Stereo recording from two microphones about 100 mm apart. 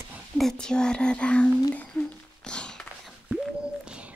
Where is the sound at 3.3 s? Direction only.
10° right (ahead or behind).